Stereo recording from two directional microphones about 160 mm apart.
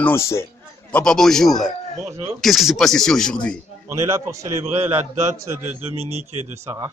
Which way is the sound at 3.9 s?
20° right (ahead or behind).